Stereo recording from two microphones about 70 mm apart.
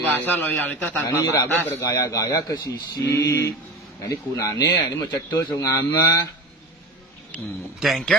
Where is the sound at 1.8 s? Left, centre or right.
Left.